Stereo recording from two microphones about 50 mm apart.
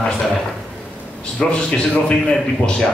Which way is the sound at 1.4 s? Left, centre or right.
Left.